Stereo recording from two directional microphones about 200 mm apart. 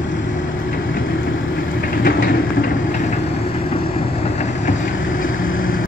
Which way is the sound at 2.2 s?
40° left (ahead or behind).